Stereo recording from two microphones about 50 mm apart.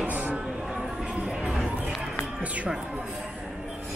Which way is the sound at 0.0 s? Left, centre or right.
Right.